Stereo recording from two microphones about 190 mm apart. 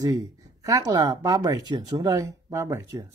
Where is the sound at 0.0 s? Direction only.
20° right (ahead or behind).